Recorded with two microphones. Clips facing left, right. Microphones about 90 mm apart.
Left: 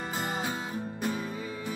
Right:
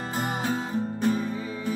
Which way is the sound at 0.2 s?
50° right (ahead or behind).